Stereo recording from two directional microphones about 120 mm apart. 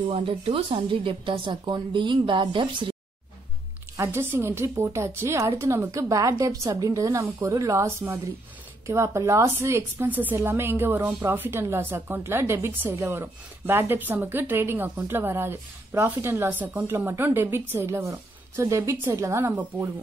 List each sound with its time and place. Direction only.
0.1 s speech: 50° right (ahead or behind)
3.9 s a woman's voice: 20° right (ahead or behind)